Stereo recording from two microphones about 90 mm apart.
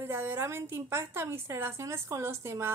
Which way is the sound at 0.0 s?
25° right (ahead or behind).